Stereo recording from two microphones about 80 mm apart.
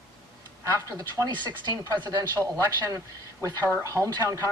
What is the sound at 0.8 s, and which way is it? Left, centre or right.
Speech, right.